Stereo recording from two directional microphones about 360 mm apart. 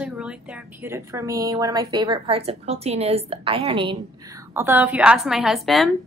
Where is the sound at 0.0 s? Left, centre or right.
Centre.